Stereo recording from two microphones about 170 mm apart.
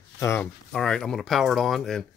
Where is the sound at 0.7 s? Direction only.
5° left (ahead or behind).